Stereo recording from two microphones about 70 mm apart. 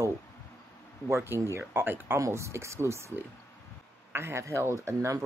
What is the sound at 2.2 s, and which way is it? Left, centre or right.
Speech, right.